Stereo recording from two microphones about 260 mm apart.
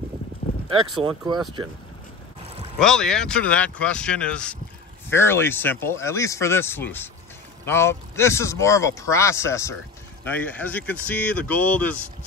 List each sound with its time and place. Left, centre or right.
0.4 s a sound: left
1.0 s speech: centre
2.8 s speech: centre